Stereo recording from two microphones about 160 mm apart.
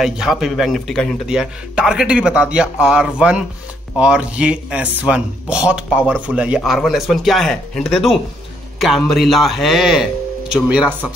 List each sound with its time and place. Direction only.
0.0 s speech: centre (ahead or behind)